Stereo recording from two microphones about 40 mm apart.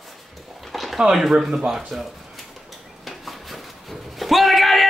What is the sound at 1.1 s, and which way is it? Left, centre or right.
Speech, centre.